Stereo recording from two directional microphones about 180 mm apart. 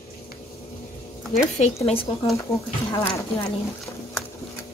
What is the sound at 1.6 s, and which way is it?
A woman's voice, 35° left (ahead or behind).